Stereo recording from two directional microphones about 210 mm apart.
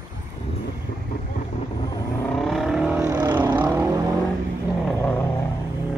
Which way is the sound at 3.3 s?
10° right (ahead or behind).